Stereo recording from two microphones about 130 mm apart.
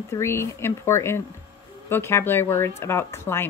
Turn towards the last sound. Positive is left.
turn(degrees=20)  # may be behind; listen again after turning